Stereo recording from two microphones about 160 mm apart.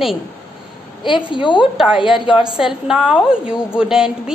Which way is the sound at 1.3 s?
30° left (ahead or behind).